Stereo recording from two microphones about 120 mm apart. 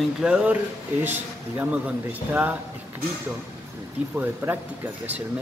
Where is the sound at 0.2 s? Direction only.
10° right (ahead or behind).